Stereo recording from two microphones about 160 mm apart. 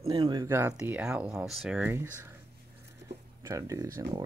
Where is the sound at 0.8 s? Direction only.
5° right (ahead or behind).